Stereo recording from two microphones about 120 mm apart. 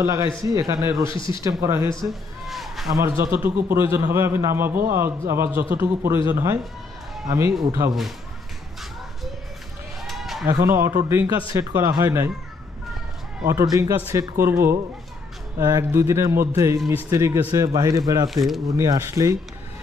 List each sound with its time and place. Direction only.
0.0 s speech: 25° right (ahead or behind)
1.0 s speech: 40° left (ahead or behind)
1.4 s speech: 25° right (ahead or behind)
2.0 s a sound: centre (ahead or behind)
3.0 s speech: 25° right (ahead or behind)
10.0 s a sound: centre (ahead or behind)
10.5 s speech: 25° right (ahead or behind)
13.5 s speech: 25° right (ahead or behind)
18.3 s speech: centre (ahead or behind)
18.7 s speech: 30° right (ahead or behind)